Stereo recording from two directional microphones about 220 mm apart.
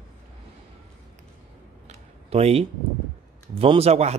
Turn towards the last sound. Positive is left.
turn(degrees=-30)  # may be behind; listen again after turning